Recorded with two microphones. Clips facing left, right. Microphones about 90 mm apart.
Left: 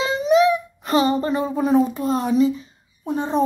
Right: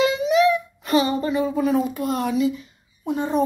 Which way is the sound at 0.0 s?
35° left (ahead or behind).